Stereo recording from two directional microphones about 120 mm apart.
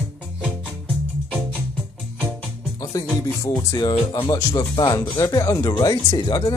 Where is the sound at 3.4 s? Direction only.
30° left (ahead or behind).